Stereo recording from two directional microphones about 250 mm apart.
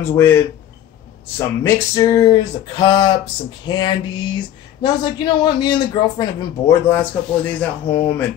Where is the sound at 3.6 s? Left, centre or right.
Centre.